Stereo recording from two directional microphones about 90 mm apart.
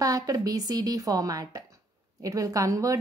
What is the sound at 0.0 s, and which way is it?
A woman's voice, 40° right (ahead or behind).